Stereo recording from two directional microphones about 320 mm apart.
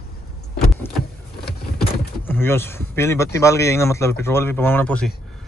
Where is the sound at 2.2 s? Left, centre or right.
Centre.